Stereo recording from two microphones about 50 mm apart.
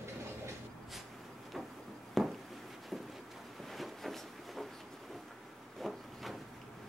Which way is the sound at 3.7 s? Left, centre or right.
Centre.